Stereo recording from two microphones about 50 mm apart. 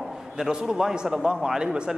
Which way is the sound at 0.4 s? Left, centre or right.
Centre.